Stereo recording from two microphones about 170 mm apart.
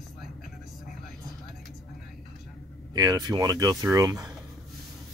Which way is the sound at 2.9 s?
25° right (ahead or behind).